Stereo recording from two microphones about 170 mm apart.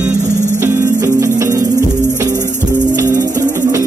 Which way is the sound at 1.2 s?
15° right (ahead or behind).